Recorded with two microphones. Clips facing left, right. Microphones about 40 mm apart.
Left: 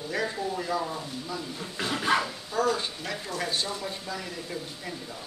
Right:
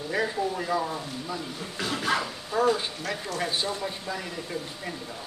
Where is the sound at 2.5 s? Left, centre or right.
Centre.